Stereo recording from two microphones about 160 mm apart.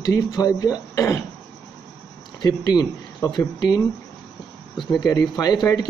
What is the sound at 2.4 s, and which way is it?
Speech, 25° left (ahead or behind).